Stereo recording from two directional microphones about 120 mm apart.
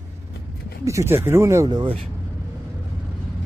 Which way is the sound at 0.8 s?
25° right (ahead or behind).